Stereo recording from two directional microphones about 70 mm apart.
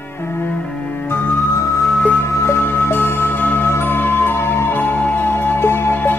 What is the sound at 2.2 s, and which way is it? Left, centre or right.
Music, left.